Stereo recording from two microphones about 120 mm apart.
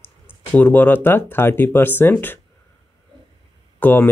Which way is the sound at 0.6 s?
15° left (ahead or behind).